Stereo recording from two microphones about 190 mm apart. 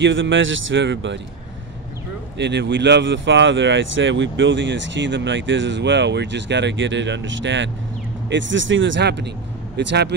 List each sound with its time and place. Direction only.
0.0 s speech: 80° right
2.3 s speech: 65° right (ahead or behind)